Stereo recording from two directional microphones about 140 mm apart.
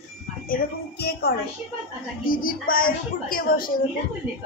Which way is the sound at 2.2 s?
90° left.